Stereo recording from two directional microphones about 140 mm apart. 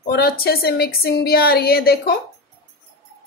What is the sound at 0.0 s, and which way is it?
A woman's voice, 90° left.